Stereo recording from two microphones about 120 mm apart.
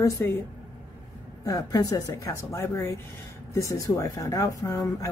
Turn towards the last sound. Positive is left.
turn(degrees=30)  # may be behind; listen again after turning